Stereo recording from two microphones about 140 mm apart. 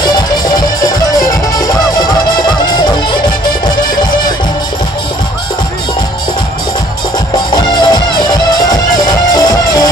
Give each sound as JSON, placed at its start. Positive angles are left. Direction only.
{"t": 7.5, "sound": "music", "side_deg": 30}
{"t": 9.3, "sound": "music", "side_deg": 25}